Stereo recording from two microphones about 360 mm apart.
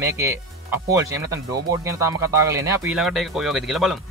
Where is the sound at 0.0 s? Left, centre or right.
Centre.